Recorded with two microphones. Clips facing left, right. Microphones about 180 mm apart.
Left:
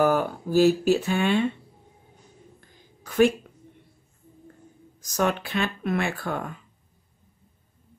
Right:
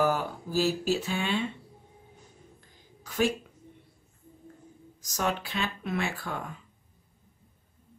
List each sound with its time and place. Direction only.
0.0 s speech: 55° left (ahead or behind)
3.0 s a sound: 55° left (ahead or behind)
5.1 s speech: 60° left (ahead or behind)